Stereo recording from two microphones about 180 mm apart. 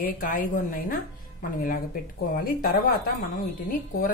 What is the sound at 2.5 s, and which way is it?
Speech, 50° left (ahead or behind).